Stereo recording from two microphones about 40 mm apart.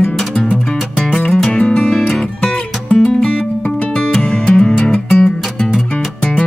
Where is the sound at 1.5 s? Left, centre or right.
Left.